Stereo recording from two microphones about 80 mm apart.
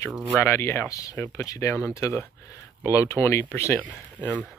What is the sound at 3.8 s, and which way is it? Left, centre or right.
Speech, centre.